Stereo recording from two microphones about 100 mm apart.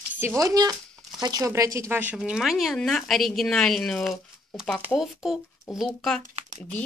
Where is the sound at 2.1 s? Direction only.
5° right (ahead or behind).